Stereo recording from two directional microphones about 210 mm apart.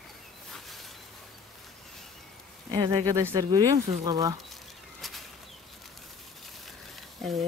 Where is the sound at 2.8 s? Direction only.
15° right (ahead or behind).